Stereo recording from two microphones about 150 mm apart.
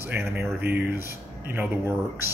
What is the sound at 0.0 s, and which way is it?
A man's voice, 15° right (ahead or behind).